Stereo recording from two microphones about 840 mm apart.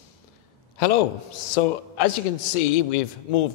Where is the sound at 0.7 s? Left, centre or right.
Left.